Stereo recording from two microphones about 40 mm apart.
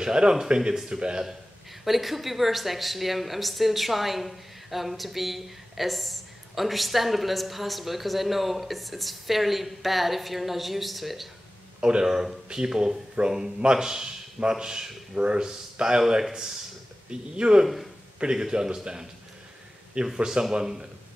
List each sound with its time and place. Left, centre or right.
0.0 s speech: centre
1.9 s speech: centre
11.8 s speech: right
12.1 s a man's voice: centre